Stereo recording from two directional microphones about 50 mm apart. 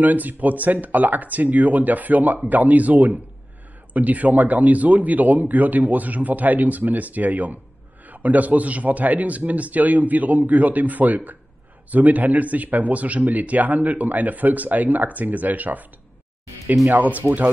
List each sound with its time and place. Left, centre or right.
0.0 s speech: right
16.9 s speech: right